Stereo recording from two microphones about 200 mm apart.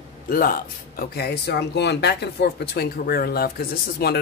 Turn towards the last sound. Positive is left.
turn(degrees=50)  # may be behind; listen again after turning